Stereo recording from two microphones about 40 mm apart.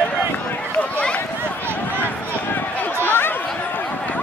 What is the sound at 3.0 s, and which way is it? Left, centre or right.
Chatter, left.